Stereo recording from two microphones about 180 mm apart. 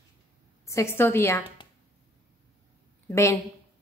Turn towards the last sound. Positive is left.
turn(degrees=15)  # may be behind; listen again after turning